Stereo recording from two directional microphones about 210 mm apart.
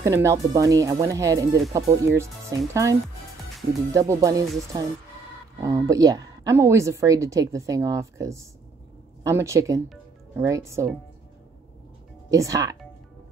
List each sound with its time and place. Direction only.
0.0 s a woman's voice: 15° right (ahead or behind)
12.3 s a woman's voice: 15° right (ahead or behind)